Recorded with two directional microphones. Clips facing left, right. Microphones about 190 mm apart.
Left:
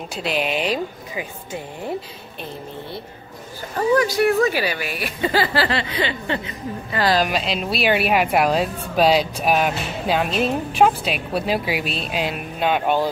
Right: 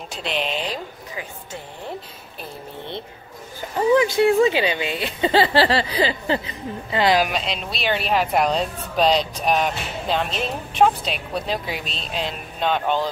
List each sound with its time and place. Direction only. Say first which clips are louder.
0.1 s a woman's voice: left 3 dB; 5° left (ahead or behind)
3.7 s speech: right 1 dB; 20° right (ahead or behind)
7.2 s a woman's voice: left 4 dB; 5° left (ahead or behind)